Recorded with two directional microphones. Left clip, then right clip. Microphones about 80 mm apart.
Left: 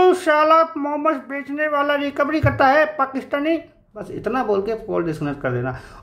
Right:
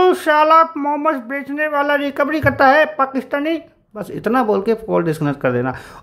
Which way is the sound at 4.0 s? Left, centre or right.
Right.